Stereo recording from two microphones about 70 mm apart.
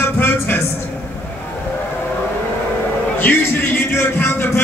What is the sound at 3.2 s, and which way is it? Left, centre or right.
Speech, left.